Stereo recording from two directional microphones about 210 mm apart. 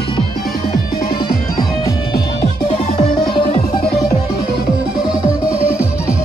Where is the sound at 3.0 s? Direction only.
25° left (ahead or behind).